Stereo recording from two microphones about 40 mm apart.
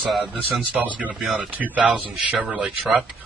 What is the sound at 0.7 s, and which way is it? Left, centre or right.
A man's voice, right.